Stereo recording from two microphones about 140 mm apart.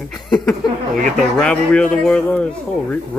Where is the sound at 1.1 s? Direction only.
5° left (ahead or behind).